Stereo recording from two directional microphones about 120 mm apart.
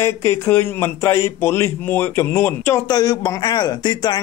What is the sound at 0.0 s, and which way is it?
Speech, 20° left (ahead or behind).